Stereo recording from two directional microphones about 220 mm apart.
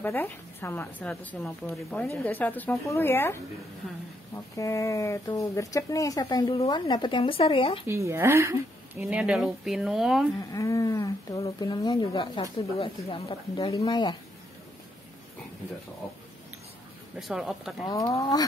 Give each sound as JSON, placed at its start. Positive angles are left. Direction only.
{"t": 0.0, "sound": "speech", "side_deg": 10}
{"t": 4.6, "sound": "speech", "side_deg": 15}
{"t": 7.8, "sound": "speech", "side_deg": -10}
{"t": 10.5, "sound": "speech", "side_deg": 15}
{"t": 17.2, "sound": "speech", "side_deg": 0}
{"t": 17.8, "sound": "speech", "side_deg": 15}